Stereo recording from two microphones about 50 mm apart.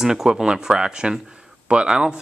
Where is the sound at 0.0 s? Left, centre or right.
Centre.